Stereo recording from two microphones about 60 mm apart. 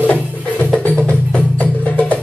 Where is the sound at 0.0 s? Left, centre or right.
Left.